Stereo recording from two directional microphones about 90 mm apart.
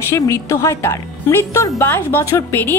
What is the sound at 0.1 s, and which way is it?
A woman's voice, 35° left (ahead or behind).